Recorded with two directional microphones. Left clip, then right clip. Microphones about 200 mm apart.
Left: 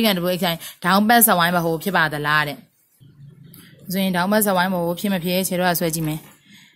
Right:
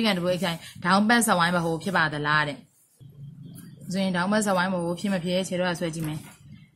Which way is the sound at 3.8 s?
40° left (ahead or behind).